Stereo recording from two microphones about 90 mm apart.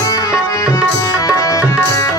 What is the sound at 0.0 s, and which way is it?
Tabla, 40° left (ahead or behind).